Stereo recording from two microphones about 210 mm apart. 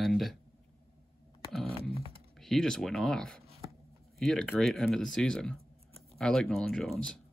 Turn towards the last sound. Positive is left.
turn(degrees=0)  # may be behind; listen again after turning